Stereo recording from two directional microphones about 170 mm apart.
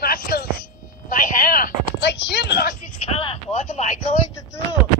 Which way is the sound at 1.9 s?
85° left.